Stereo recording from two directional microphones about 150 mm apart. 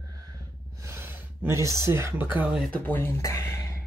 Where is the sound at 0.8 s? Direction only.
15° right (ahead or behind).